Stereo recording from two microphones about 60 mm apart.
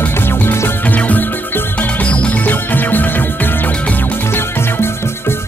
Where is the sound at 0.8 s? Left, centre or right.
Left.